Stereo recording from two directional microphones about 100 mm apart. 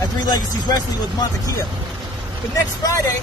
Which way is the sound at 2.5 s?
35° left (ahead or behind).